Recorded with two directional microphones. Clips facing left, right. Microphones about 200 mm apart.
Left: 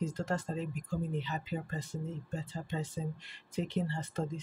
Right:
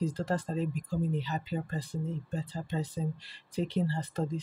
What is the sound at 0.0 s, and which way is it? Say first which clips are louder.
Speech: right 3 dB; 35° right (ahead or behind).